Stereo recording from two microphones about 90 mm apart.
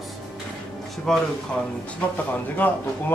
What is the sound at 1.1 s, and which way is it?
Speech, 5° left (ahead or behind).